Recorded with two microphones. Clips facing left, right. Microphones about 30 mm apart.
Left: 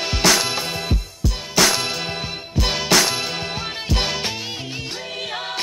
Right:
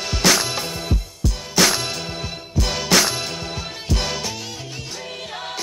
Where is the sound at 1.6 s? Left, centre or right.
Centre.